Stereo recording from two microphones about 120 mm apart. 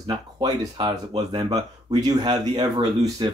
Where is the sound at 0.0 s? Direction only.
35° right (ahead or behind).